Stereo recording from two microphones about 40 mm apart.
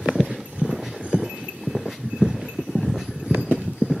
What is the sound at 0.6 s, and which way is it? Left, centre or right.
Clip-clop, right.